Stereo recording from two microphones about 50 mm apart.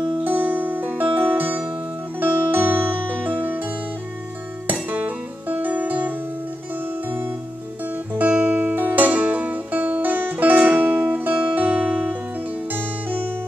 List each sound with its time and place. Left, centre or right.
0.2 s music: right
8.2 s music: right
11.4 s music: right